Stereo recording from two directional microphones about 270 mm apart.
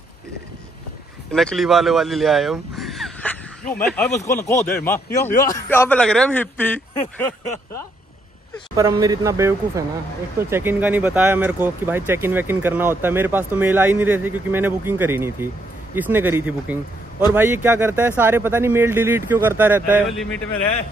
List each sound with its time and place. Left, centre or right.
1.3 s speech: centre
8.7 s speech: centre